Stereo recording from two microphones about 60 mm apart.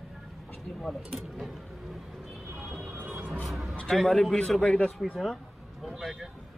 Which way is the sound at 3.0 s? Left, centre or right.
Right.